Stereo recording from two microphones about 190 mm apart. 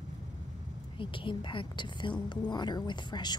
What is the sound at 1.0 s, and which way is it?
A woman's voice, 25° left (ahead or behind).